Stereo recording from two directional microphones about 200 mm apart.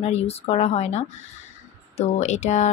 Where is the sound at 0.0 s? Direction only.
30° left (ahead or behind).